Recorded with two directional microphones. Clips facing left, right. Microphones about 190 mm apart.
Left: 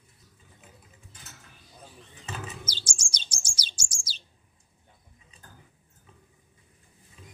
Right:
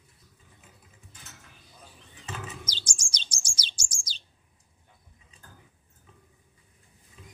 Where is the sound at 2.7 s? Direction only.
10° left (ahead or behind).